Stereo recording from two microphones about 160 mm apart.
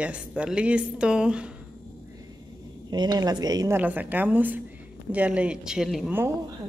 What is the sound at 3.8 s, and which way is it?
Speech, 10° right (ahead or behind).